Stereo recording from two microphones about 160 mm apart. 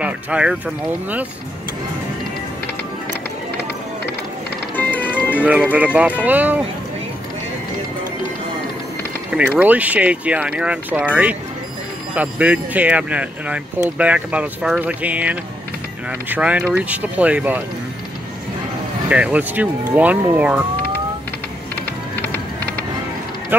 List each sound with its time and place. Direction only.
0.0 s speech: 5° right (ahead or behind)
3.5 s music: 80° right
4.7 s music: 10° left (ahead or behind)
5.4 s speech: 10° right (ahead or behind)
9.6 s speech: 10° right (ahead or behind)
12.2 s speech: 10° right (ahead or behind)
19.0 s speech: 10° right (ahead or behind)
22.2 s music: 70° right (ahead or behind)